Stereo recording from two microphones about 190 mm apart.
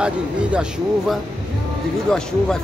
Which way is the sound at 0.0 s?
5° right (ahead or behind).